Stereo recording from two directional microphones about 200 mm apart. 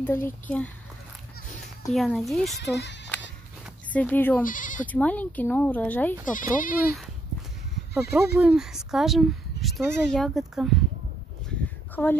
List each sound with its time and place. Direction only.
0.0 s speech: 10° left (ahead or behind)
1.9 s speech: centre (ahead or behind)
3.9 s speech: 10° left (ahead or behind)
4.5 s speech: 40° left (ahead or behind)
4.8 s speech: 5° left (ahead or behind)
6.2 s speech: 40° left (ahead or behind)
7.9 s speech: centre (ahead or behind)
11.9 s speech: 10° left (ahead or behind)